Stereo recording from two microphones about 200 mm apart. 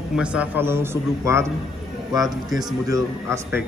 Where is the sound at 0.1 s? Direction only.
5° right (ahead or behind).